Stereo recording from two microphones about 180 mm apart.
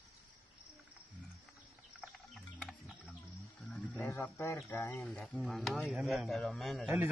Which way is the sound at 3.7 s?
10° left (ahead or behind).